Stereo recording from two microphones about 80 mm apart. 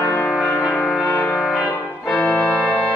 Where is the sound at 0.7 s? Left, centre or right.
Centre.